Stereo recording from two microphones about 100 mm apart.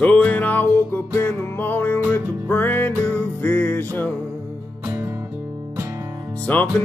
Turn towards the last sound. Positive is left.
turn(degrees=15)  # may be behind; listen again after turning